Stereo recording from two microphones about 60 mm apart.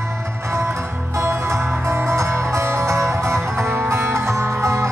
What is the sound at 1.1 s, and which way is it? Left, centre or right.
Music, right.